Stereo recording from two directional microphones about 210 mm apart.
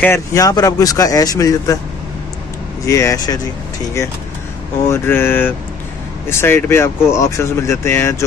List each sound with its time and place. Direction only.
0.0 s speech: 15° left (ahead or behind)
2.8 s speech: 15° left (ahead or behind)
4.8 s speech: 10° left (ahead or behind)